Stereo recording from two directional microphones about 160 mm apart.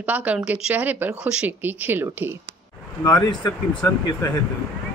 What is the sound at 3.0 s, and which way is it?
Speech, 25° left (ahead or behind).